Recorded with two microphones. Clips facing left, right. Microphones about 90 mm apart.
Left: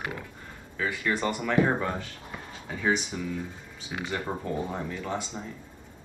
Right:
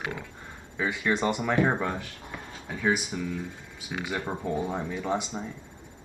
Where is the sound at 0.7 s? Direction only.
20° right (ahead or behind).